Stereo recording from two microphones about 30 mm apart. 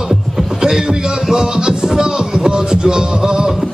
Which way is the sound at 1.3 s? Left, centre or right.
Right.